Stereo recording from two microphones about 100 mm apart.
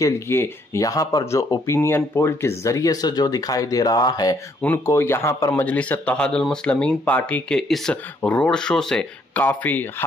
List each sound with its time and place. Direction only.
0.0 s speech: 30° left (ahead or behind)
4.8 s speech: 25° left (ahead or behind)
5.6 s speech: 15° left (ahead or behind)
8.2 s speech: 15° left (ahead or behind)